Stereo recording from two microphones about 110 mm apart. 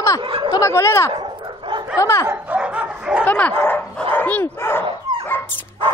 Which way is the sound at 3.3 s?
15° left (ahead or behind).